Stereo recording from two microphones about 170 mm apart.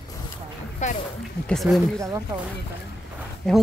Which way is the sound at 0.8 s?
45° left (ahead or behind).